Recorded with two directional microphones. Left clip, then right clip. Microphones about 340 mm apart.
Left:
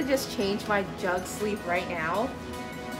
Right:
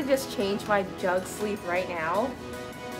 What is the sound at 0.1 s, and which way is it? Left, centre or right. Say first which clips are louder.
Speech: right 3 dB; centre.